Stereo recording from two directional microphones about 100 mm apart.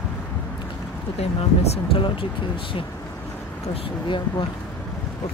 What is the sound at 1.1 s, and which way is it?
Speech, 90° left.